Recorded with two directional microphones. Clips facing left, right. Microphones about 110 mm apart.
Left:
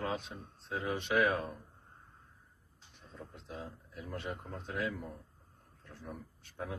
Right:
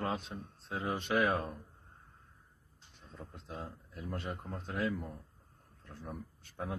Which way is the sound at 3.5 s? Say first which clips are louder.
Right 1 dB; 35° right (ahead or behind).